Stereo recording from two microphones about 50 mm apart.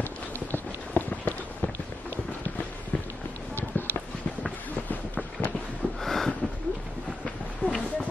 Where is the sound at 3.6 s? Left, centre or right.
Left.